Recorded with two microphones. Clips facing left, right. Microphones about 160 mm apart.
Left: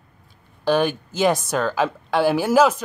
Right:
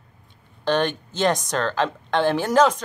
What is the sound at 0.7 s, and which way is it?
Speech, 10° left (ahead or behind).